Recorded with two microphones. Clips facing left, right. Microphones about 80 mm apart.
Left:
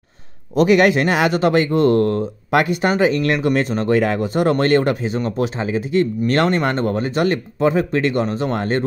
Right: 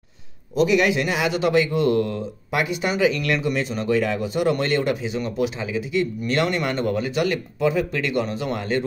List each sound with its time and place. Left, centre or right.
0.6 s speech: left
3.3 s speech: left